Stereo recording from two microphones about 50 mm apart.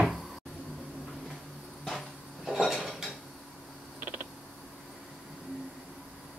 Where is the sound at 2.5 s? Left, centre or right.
Centre.